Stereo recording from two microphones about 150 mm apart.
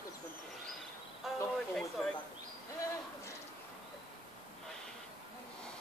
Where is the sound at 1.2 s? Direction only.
Centre (ahead or behind).